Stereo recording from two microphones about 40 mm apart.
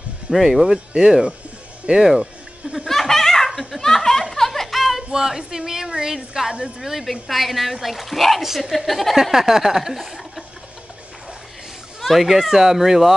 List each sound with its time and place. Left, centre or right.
0.3 s speech: centre
0.9 s speech: right
2.9 s laughter: centre
5.1 s a woman's voice: centre
8.7 s speech: centre
12.0 s speech: centre